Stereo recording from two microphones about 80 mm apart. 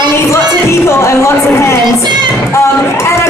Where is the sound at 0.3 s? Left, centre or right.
Left.